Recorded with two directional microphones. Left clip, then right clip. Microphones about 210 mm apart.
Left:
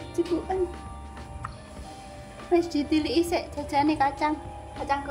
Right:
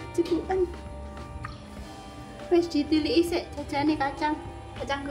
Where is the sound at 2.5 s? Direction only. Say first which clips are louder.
Even; 15° left (ahead or behind).